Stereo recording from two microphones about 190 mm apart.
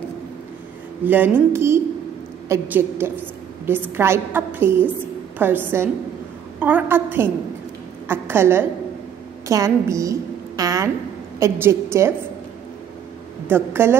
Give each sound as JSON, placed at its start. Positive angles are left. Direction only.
{"t": 1.0, "sound": "a woman's voice", "side_deg": -10}
{"t": 13.5, "sound": "a woman's voice", "side_deg": -10}